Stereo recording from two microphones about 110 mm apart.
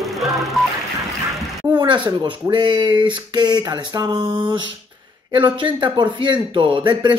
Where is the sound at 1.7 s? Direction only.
45° right (ahead or behind).